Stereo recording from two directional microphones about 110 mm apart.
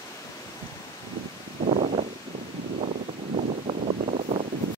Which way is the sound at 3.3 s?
90° right.